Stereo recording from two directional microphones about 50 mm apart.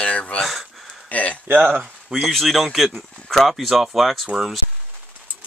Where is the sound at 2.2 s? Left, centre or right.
Centre.